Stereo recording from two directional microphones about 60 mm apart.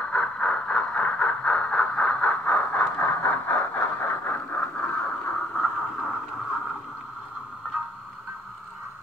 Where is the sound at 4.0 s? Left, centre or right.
Left.